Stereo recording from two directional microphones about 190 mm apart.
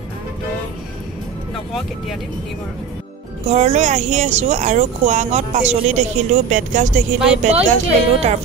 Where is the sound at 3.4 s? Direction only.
35° right (ahead or behind).